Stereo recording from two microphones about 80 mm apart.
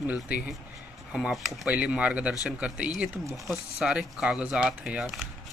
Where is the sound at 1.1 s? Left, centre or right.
Centre.